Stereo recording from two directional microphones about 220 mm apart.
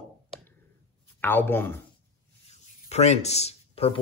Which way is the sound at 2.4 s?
30° left (ahead or behind).